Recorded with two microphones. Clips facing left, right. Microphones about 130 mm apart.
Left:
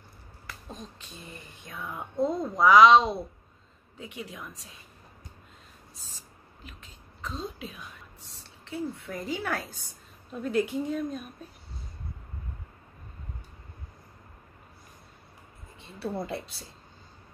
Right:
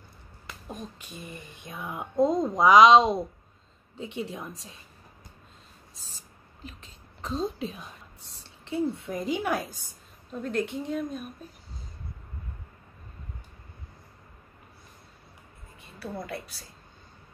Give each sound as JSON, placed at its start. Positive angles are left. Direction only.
{"t": 0.7, "sound": "speech", "side_deg": -10}
{"t": 3.9, "sound": "a woman's voice", "side_deg": -25}
{"t": 6.6, "sound": "a sound", "side_deg": -35}
{"t": 8.6, "sound": "a woman's voice", "side_deg": -20}
{"t": 10.3, "sound": "a woman's voice", "side_deg": 5}
{"t": 15.8, "sound": "a woman's voice", "side_deg": 25}